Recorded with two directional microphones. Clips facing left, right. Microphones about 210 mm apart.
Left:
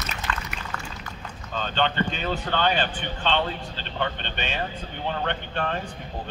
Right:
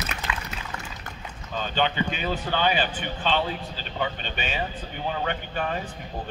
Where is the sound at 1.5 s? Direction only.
10° right (ahead or behind).